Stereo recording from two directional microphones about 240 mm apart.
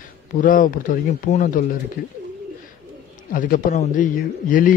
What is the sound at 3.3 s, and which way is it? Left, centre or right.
A man's voice, left.